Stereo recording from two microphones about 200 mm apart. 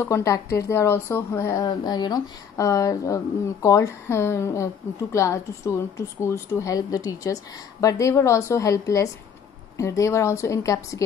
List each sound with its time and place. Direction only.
0.0 s speech: 15° left (ahead or behind)